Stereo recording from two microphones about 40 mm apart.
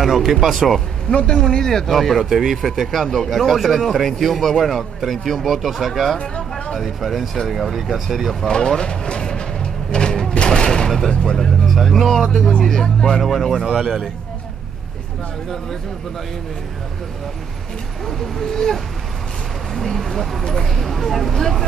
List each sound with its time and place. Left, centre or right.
0.0 s speech: centre
1.1 s speech: left; by 8.5 s centre
8.5 s speech: centre
9.9 s a sound: centre
10.3 s mechanisms: left
11.1 s speech: centre
13.2 s a man's voice: centre
18.0 s speech: centre